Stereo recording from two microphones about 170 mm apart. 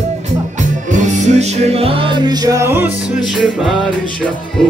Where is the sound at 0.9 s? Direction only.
45° right (ahead or behind); by 2.9 s 15° right (ahead or behind).